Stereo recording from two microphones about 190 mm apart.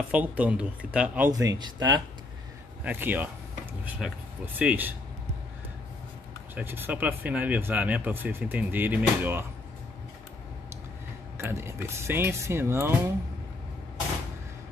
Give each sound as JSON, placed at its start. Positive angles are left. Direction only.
{"t": 0.1, "sound": "speech", "side_deg": -5}
{"t": 1.3, "sound": "speech", "side_deg": -20}
{"t": 2.8, "sound": "speech", "side_deg": -10}
{"t": 4.6, "sound": "speech", "side_deg": -10}
{"t": 6.5, "sound": "speech", "side_deg": -10}
{"t": 11.3, "sound": "speech", "side_deg": -15}